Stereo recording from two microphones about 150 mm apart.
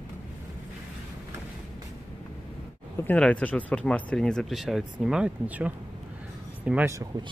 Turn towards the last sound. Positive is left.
turn(degrees=-10)  # may be behind; listen again after turning